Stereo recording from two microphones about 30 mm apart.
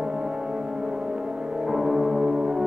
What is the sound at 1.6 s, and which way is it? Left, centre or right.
Music, centre.